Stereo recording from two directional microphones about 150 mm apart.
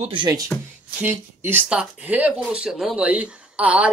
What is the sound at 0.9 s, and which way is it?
Speech, 10° right (ahead or behind).